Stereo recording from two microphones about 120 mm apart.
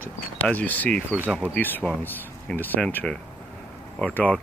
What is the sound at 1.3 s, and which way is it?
Speech, 5° right (ahead or behind).